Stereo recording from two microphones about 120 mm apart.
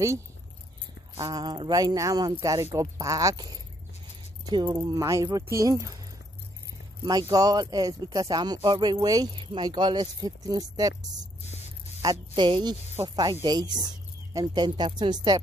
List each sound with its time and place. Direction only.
1.1 s speech: 35° right (ahead or behind)
4.8 s speech: 30° right (ahead or behind)
7.0 s speech: 30° right (ahead or behind)
11.4 s mains hum: 65° left (ahead or behind)
12.0 s speech: 40° right (ahead or behind)